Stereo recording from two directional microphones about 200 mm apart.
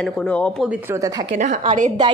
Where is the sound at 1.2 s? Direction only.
35° right (ahead or behind).